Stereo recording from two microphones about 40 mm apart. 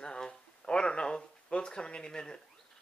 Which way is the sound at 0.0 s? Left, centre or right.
Left.